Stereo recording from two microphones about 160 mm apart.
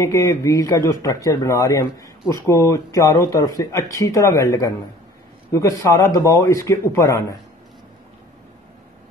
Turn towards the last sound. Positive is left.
turn(degrees=20)  # may be behind; listen again after turning